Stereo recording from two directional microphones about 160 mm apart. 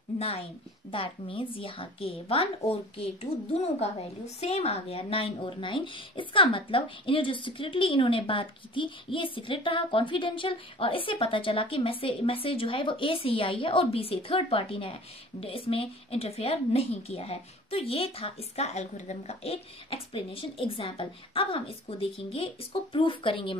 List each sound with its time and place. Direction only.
0.2 s speech: 40° left (ahead or behind)